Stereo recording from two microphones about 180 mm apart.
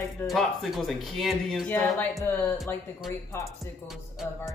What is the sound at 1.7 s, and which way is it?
Speech, 10° left (ahead or behind).